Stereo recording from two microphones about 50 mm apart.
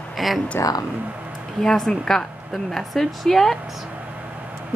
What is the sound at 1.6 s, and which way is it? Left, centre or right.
A woman's voice, centre.